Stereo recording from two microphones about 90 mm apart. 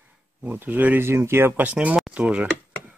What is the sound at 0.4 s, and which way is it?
Speech, 20° right (ahead or behind).